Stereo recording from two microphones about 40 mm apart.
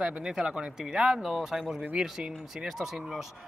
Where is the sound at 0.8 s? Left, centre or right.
Centre.